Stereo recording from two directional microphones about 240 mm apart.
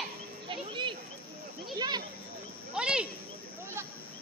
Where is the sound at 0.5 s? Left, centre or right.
Centre.